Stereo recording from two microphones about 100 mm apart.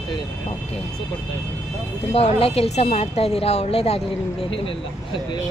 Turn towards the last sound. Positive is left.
turn(degrees=90)